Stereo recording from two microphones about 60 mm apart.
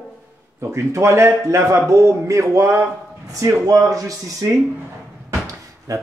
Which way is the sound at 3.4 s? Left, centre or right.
Right.